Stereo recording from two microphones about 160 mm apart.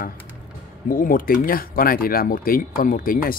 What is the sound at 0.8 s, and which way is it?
Speech, 60° left (ahead or behind).